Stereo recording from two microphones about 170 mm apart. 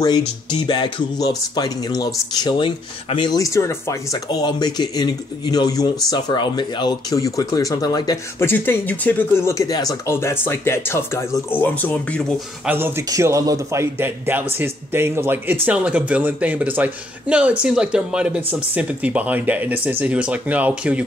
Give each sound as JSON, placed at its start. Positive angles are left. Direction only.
{"t": 0.0, "sound": "speech", "side_deg": 25}
{"t": 12.6, "sound": "speech", "side_deg": -15}